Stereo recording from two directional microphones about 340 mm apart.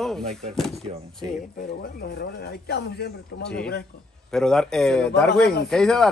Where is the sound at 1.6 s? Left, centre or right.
Left.